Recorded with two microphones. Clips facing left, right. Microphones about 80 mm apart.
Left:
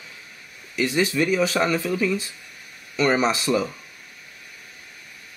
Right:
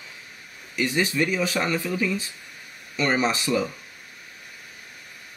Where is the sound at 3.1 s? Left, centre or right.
Centre.